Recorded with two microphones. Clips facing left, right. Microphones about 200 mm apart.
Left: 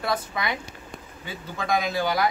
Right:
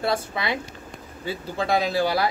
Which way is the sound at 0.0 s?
30° right (ahead or behind).